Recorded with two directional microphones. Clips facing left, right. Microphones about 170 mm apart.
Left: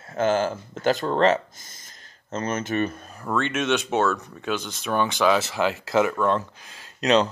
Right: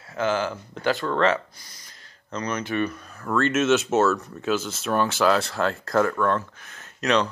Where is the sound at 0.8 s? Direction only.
35° left (ahead or behind).